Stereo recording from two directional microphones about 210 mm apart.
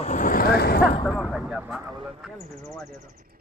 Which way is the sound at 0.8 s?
Centre (ahead or behind).